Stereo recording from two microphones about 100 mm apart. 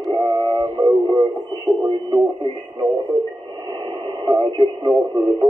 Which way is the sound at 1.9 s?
50° right (ahead or behind).